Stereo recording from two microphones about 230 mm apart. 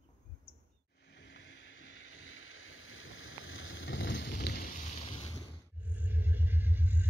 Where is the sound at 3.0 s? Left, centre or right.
Left.